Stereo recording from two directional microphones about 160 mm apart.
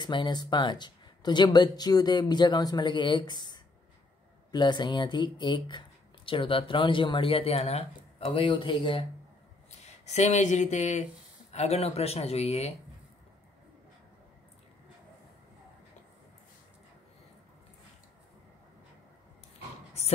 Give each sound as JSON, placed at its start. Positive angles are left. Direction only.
{"t": 0.0, "sound": "speech", "side_deg": 30}
{"t": 9.7, "sound": "speech", "side_deg": 45}